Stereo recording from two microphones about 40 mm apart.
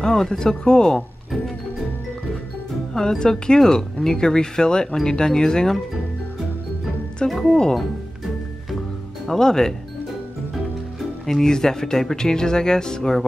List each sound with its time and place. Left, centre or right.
0.0 s speech: centre
2.9 s speech: centre
7.2 s speech: centre
9.4 s speech: centre
11.2 s speech: centre